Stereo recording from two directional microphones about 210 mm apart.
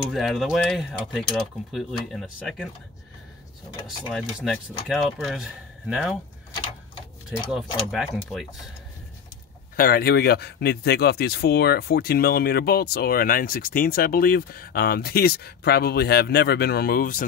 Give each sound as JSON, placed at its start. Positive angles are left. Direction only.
{"t": 0.1, "sound": "speech", "side_deg": 0}
{"t": 3.8, "sound": "speech", "side_deg": 0}
{"t": 7.9, "sound": "speech", "side_deg": 0}
{"t": 9.8, "sound": "speech", "side_deg": 45}